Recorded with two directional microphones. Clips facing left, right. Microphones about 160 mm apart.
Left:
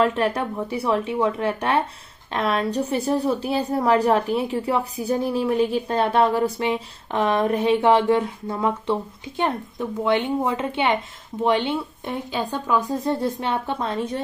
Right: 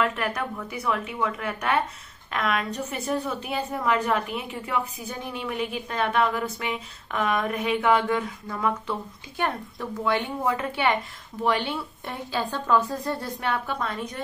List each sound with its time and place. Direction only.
0.0 s a woman's voice: 30° left (ahead or behind)